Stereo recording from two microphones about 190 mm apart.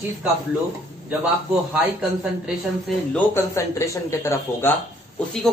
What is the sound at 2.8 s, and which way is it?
Speech, 10° left (ahead or behind).